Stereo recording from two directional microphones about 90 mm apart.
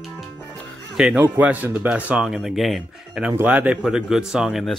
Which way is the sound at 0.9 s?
10° right (ahead or behind).